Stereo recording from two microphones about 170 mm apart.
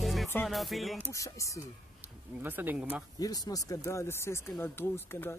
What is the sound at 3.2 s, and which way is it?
Speech, 20° left (ahead or behind).